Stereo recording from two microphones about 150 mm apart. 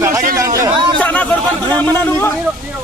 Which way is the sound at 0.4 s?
20° right (ahead or behind).